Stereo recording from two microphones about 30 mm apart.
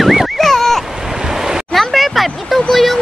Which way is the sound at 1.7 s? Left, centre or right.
Centre.